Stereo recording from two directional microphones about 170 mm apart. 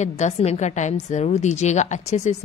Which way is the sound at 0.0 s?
40° left (ahead or behind).